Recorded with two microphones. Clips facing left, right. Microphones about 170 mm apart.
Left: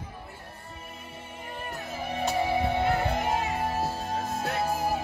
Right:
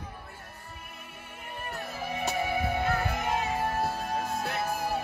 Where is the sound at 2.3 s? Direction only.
30° left (ahead or behind).